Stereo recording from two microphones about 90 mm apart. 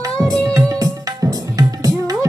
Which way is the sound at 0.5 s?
40° right (ahead or behind).